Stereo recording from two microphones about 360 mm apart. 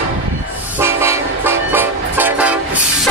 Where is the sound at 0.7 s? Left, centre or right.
Centre.